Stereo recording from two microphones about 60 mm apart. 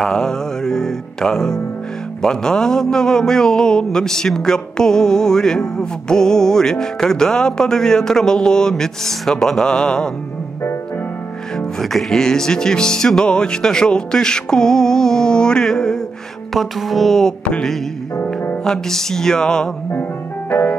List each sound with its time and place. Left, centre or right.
0.0 s a man's voice: centre
11.5 s a man's voice: centre
16.5 s a sound: centre
18.1 s music: left
18.6 s a man's voice: centre
19.9 s music: left